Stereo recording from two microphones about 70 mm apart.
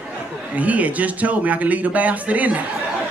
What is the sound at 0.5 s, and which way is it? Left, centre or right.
A man's voice, right.